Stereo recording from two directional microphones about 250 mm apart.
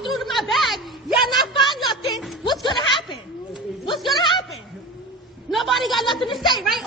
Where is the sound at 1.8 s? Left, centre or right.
Centre.